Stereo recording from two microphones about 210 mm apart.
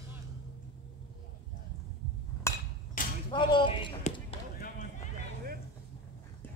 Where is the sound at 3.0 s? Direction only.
40° left (ahead or behind).